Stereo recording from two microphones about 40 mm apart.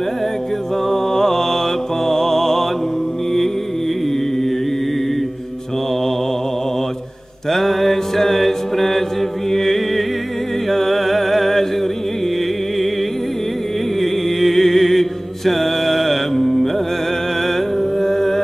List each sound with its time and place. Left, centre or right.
0.8 s mantra: centre
2.0 s music: centre
7.5 s mantra: centre
9.5 s music: centre
14.4 s mantra: centre
18.0 s music: centre